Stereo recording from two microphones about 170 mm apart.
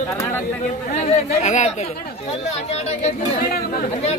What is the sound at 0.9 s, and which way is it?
Speech, 40° left (ahead or behind).